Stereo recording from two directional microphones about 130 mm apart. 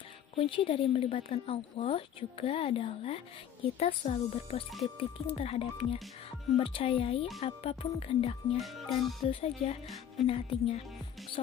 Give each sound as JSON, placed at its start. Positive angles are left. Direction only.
{"t": 0.4, "sound": "a woman's voice", "side_deg": 45}
{"t": 8.5, "sound": "speech", "side_deg": 0}
{"t": 9.3, "sound": "a woman's voice", "side_deg": 50}
{"t": 11.4, "sound": "speech", "side_deg": 60}